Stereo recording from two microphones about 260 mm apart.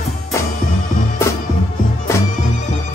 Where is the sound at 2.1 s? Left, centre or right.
Centre.